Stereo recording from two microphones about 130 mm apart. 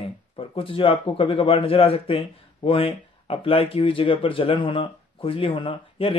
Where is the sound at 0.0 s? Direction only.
45° left (ahead or behind).